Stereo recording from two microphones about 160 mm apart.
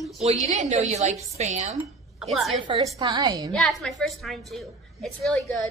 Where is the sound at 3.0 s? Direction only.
25° right (ahead or behind).